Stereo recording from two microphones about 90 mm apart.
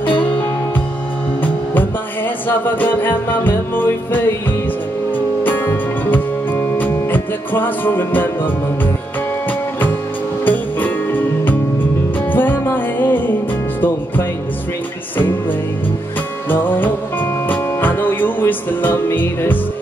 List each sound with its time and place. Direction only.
0.1 s music: 20° left (ahead or behind)
10.4 s music: 20° left (ahead or behind)
16.4 s music: 20° left (ahead or behind)